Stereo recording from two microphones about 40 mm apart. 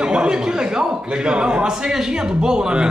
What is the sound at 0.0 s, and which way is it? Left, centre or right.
A man's voice, right.